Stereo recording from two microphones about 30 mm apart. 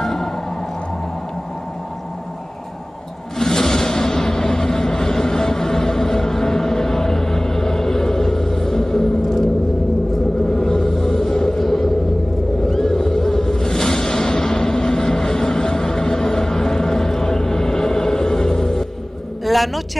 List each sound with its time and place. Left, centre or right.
0.0 s music: centre
3.3 s a sound: centre
10.5 s music: centre
11.6 s vehicle: centre
12.6 s music: centre
19.4 s a sound: centre